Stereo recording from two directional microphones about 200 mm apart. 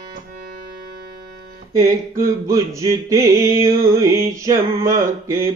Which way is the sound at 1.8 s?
15° right (ahead or behind).